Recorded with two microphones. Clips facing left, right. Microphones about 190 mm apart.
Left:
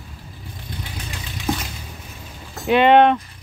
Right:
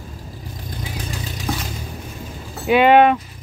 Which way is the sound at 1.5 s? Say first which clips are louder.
Left 2 dB; 5° left (ahead or behind).